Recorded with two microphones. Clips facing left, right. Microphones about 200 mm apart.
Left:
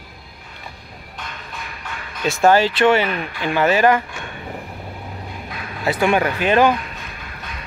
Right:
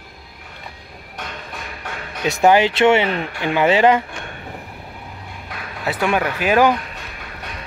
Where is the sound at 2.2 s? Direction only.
20° right (ahead or behind).